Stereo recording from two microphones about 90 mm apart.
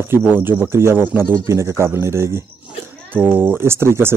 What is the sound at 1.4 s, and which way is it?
Speech, 35° right (ahead or behind).